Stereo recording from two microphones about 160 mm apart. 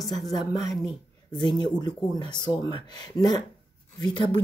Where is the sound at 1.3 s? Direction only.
30° left (ahead or behind).